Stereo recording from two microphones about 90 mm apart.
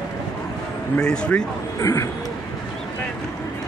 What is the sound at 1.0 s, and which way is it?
Speech, 10° left (ahead or behind).